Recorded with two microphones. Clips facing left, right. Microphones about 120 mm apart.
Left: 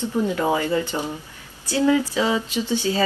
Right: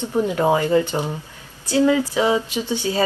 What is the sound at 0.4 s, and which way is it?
Speech, 35° right (ahead or behind).